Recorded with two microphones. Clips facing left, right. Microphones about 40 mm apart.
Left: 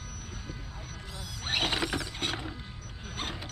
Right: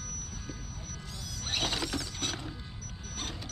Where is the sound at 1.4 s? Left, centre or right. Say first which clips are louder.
Left 3 dB; left.